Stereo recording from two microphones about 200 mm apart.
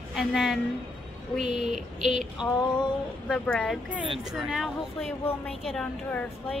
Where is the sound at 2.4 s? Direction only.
20° left (ahead or behind).